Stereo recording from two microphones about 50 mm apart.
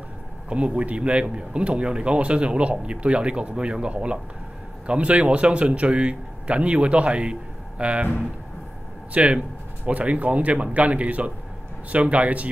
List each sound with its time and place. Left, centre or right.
0.5 s speech: right
9.1 s speech: right